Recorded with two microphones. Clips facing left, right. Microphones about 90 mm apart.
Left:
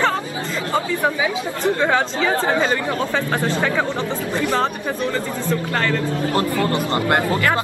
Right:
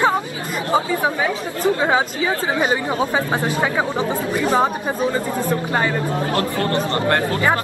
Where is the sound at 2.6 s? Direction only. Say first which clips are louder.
Right 1 dB; 15° right (ahead or behind).